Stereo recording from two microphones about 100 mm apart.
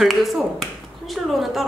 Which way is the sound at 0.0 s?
Centre (ahead or behind).